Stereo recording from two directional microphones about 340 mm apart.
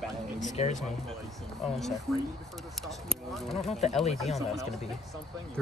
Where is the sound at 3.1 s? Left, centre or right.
Centre.